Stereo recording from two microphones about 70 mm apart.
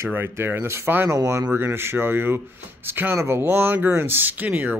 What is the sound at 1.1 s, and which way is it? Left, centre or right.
Speech, right.